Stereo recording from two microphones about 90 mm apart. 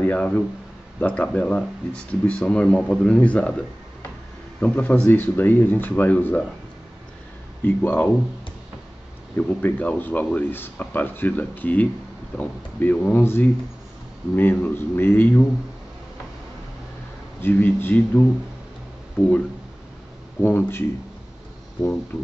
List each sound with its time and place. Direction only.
0.0 s speech: 15° left (ahead or behind)
7.6 s speech: 20° left (ahead or behind)
9.4 s speech: 15° left (ahead or behind)
17.4 s speech: 20° left (ahead or behind)
20.4 s speech: 25° left (ahead or behind)